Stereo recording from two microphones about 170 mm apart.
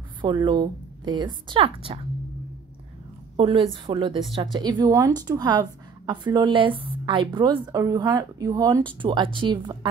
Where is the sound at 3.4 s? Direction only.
30° right (ahead or behind).